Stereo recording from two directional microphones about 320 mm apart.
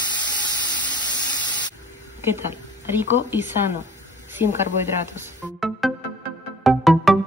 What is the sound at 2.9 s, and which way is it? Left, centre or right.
Speech, centre.